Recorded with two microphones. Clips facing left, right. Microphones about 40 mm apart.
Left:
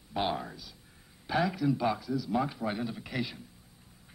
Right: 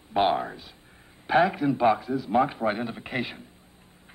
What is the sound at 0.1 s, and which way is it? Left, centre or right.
A man's voice, right.